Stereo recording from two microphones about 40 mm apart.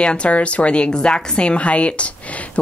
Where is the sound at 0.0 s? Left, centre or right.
Left.